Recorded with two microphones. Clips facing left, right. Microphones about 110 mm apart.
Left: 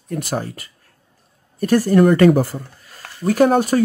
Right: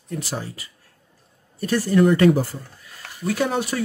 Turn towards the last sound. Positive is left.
turn(degrees=45)  # may be behind; listen again after turning